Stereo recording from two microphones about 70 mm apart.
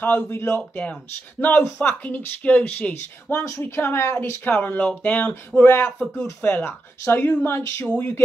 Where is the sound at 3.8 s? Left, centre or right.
Left.